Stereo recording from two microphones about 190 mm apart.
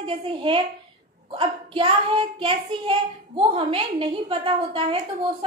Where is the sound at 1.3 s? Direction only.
25° right (ahead or behind).